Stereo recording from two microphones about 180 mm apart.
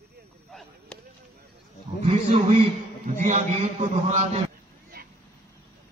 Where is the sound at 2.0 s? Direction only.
35° right (ahead or behind).